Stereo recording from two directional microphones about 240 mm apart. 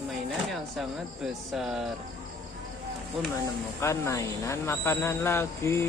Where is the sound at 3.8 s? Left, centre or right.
Centre.